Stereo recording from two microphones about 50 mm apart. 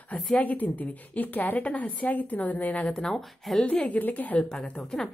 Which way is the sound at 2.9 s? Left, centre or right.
Centre.